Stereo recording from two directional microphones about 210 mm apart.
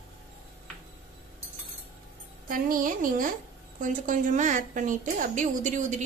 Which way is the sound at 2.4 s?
40° right (ahead or behind).